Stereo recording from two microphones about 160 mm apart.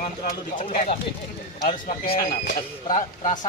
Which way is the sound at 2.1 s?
60° left (ahead or behind).